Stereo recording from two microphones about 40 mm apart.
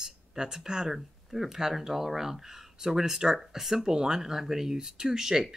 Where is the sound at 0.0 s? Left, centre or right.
Centre.